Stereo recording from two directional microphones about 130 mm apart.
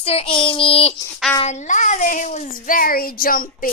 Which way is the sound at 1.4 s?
75° left (ahead or behind).